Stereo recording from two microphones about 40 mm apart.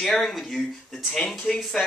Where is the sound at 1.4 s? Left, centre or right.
Centre.